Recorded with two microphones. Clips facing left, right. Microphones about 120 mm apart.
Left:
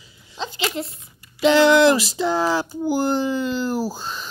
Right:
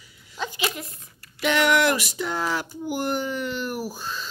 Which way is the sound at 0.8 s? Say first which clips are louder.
Left 9 dB; 25° left (ahead or behind).